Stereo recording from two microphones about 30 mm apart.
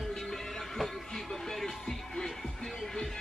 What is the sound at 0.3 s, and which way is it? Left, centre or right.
Music, centre.